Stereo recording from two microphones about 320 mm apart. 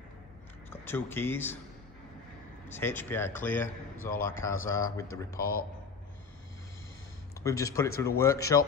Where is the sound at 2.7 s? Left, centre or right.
Centre.